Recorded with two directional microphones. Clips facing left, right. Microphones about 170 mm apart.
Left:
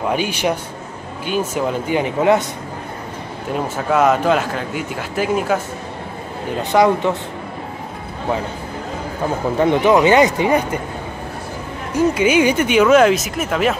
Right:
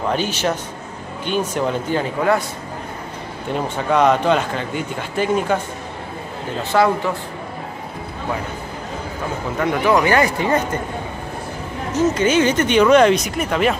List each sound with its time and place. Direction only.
0.0 s speech: 10° left (ahead or behind)
2.0 s speech: 20° left (ahead or behind)
3.5 s speech: 5° left (ahead or behind)
6.6 s speech: 15° left (ahead or behind)
9.6 s speech: 25° left (ahead or behind)
11.9 s speech: 10° left (ahead or behind)